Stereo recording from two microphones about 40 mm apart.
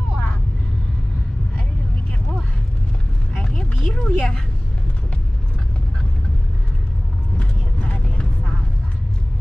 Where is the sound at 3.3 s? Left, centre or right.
Centre.